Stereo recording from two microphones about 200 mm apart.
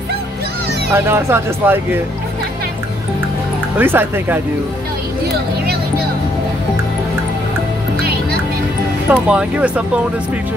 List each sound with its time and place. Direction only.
0.9 s speech: 10° right (ahead or behind)
3.7 s speech: 10° right (ahead or behind)
8.0 s music: 50° right (ahead or behind)
9.1 s speech: 5° right (ahead or behind)